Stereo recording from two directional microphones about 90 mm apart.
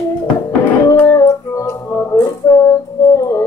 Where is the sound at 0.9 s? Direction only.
20° left (ahead or behind).